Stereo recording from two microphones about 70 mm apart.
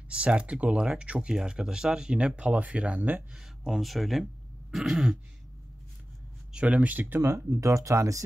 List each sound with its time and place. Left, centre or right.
0.1 s speech: centre
3.0 s speech: right
3.3 s speech: centre
6.5 s speech: centre
7.2 s speech: right